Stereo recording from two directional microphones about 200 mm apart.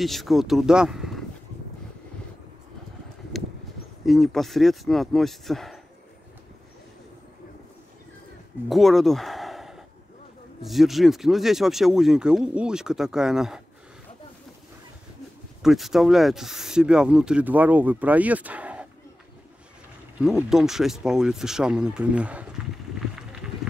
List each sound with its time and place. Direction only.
0.0 s speech: centre (ahead or behind)
4.0 s speech: centre (ahead or behind)
8.6 s speech: centre (ahead or behind)
15.6 s speech: centre (ahead or behind)
20.2 s speech: 5° right (ahead or behind)